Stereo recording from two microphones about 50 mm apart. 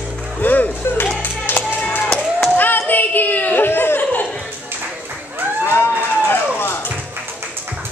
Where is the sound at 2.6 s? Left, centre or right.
Left.